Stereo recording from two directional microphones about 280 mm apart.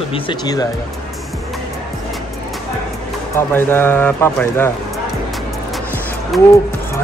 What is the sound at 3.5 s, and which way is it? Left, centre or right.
A man's voice, centre.